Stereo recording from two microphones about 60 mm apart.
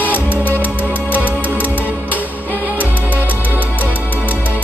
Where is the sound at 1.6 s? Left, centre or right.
Left.